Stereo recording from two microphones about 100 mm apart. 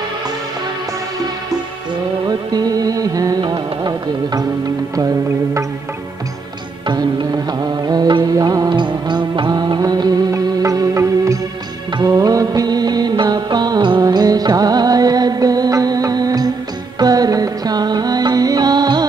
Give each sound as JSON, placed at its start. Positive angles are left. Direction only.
{"t": 2.2, "sound": "music", "side_deg": -40}
{"t": 6.9, "sound": "music", "side_deg": -45}
{"t": 8.6, "sound": "music", "side_deg": -50}
{"t": 12.0, "sound": "music of bollywood", "side_deg": -40}
{"t": 14.0, "sound": "music", "side_deg": -40}